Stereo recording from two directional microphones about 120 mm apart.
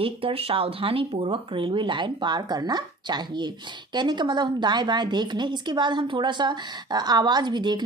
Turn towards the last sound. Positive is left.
turn(degrees=-40)  # may be behind; listen again after turning